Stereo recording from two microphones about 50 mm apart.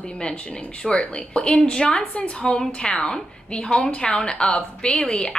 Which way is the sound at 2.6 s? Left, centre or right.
Centre.